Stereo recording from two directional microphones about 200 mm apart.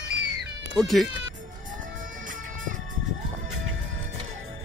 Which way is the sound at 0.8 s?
Centre (ahead or behind).